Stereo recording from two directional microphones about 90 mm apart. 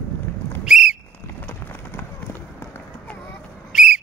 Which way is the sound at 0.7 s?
5° right (ahead or behind).